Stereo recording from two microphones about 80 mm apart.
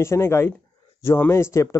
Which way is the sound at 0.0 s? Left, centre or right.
Left.